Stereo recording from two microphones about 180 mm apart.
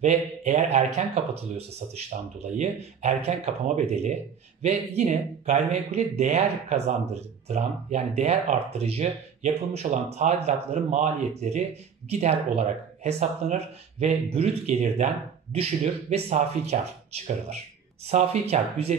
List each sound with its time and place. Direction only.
0.0 s speech: 40° right (ahead or behind)